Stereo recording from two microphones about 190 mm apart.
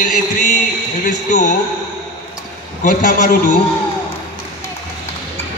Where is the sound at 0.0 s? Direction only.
45° left (ahead or behind).